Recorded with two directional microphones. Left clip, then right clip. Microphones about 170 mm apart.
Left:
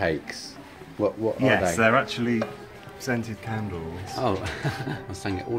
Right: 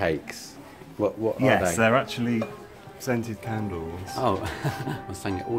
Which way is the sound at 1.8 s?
60° right (ahead or behind).